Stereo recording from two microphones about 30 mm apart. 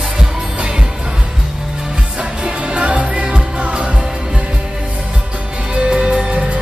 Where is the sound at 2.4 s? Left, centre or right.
Right.